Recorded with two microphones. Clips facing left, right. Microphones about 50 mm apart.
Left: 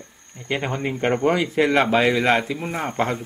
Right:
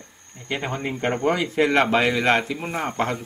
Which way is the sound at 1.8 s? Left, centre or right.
Left.